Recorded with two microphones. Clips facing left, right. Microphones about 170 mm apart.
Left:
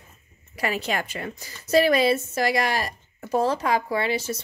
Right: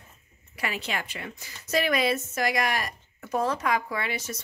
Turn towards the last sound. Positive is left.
turn(degrees=30)  # may be behind; listen again after turning